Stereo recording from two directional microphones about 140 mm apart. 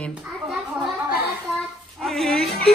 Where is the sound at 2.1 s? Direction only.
5° left (ahead or behind).